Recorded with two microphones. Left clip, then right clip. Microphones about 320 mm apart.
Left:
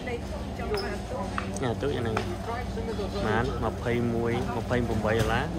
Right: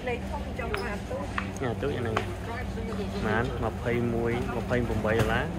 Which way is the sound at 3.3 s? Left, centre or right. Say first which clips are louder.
Even; centre.